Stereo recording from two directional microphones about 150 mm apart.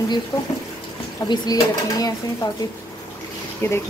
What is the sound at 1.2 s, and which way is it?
Speech, 25° left (ahead or behind).